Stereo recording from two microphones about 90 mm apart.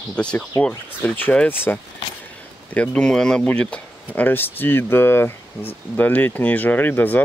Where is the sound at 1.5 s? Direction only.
25° left (ahead or behind).